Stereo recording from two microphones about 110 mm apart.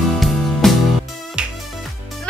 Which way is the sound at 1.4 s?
10° right (ahead or behind).